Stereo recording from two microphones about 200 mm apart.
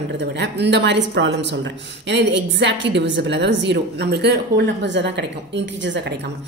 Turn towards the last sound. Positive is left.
turn(degrees=-65)  # may be behind; listen again after turning